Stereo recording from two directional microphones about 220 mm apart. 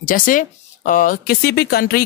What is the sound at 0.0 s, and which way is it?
Speech, 40° left (ahead or behind).